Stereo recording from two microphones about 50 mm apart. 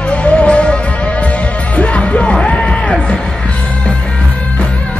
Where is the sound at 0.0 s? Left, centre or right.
Left.